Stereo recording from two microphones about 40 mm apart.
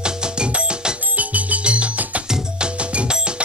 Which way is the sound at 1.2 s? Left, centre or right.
Right.